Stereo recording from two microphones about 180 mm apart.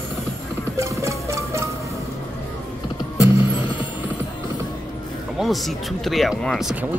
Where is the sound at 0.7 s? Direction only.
15° right (ahead or behind).